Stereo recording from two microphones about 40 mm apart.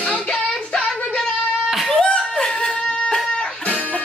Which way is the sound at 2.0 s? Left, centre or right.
Centre.